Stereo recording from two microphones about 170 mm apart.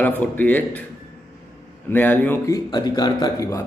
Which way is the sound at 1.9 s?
10° left (ahead or behind).